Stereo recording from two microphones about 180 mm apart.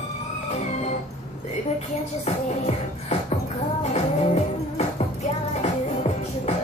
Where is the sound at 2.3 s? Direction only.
35° left (ahead or behind).